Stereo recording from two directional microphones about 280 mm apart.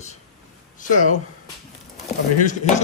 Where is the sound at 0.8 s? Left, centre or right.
Left.